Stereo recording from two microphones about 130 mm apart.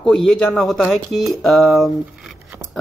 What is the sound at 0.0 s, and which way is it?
Speech, 5° left (ahead or behind).